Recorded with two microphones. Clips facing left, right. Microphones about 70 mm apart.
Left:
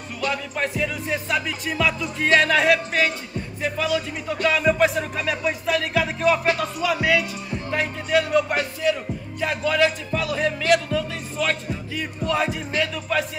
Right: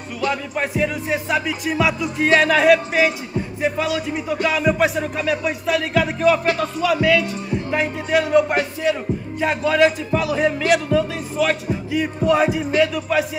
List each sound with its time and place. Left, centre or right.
0.3 s speech: centre
3.6 s speech: centre
4.3 s music: centre
7.0 s speech: centre
7.7 s speech: centre
8.2 s music: right
9.6 s speech: centre